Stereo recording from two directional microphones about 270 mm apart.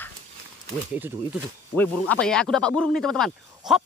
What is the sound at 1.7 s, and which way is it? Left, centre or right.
Speech, centre.